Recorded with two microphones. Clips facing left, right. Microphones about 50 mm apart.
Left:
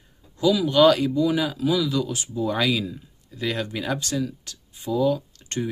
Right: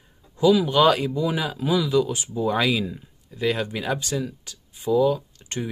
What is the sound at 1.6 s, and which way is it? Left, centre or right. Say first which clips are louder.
Speech: right 3 dB; right.